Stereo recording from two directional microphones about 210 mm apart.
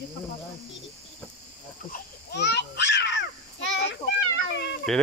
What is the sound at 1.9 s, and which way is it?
Babbling, 45° left (ahead or behind).